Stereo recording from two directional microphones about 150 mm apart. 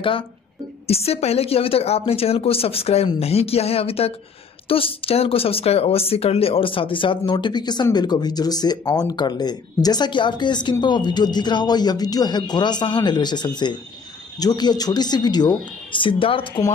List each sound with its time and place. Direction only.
0.8 s speech: 40° left (ahead or behind)